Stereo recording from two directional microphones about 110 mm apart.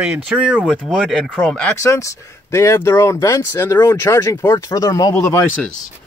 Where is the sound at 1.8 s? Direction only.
30° left (ahead or behind).